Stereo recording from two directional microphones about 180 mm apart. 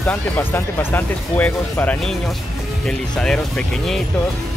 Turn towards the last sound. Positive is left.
turn(degrees=5)  # may be behind; listen again after turning